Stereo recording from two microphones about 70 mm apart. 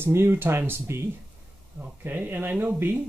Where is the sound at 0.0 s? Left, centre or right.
Right.